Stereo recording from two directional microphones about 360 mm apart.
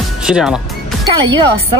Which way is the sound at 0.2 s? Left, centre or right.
Centre.